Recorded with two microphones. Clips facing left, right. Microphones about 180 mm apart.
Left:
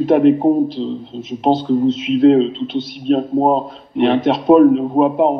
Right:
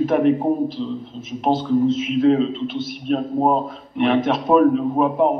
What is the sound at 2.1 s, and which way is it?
A man's voice, 30° left (ahead or behind).